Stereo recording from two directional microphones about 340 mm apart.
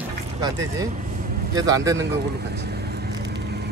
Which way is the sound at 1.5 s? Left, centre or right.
Centre.